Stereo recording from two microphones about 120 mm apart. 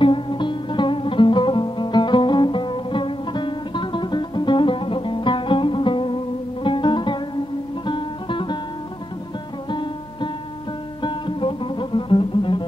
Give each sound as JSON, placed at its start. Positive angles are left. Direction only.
{"t": 0.0, "sound": "music", "side_deg": 45}
{"t": 9.7, "sound": "music", "side_deg": 45}